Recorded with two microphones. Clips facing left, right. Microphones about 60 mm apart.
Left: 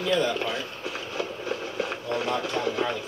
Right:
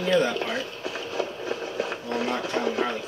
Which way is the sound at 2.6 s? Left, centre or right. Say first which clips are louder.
Right 4 dB; right.